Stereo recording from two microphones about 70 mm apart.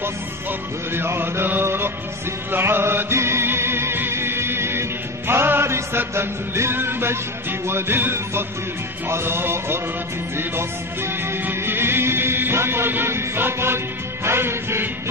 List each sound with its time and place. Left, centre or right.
0.0 s music: right
11.2 s music: right